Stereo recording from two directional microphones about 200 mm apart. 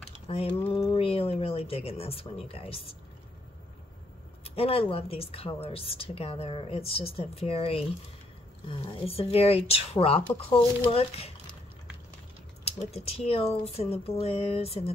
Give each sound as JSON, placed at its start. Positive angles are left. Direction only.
{"t": 0.3, "sound": "a woman's voice", "side_deg": 25}
{"t": 4.6, "sound": "a woman's voice", "side_deg": 30}
{"t": 12.6, "sound": "speech", "side_deg": 30}